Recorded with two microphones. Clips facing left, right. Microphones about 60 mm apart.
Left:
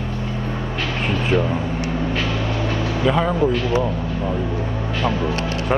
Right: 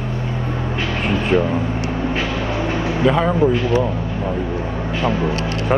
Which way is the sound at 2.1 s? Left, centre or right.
Right.